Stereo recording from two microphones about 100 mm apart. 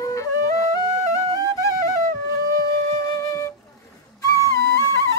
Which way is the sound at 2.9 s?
30° left (ahead or behind).